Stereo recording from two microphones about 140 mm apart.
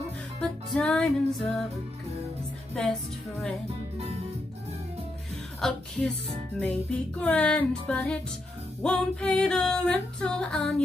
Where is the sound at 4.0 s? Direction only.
45° right (ahead or behind).